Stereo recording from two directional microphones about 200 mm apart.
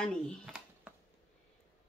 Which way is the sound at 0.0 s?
Centre (ahead or behind).